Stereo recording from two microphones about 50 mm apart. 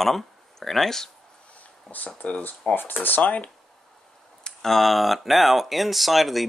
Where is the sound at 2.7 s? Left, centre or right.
Left.